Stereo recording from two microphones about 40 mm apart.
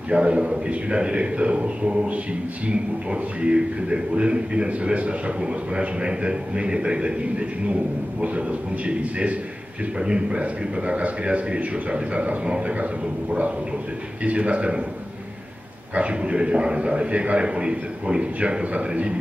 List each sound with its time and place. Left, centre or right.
0.1 s a man's voice: right
14.2 s a man's voice: right
15.9 s a man's voice: right